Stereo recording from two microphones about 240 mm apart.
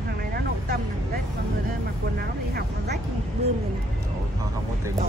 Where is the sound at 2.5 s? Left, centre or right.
Right.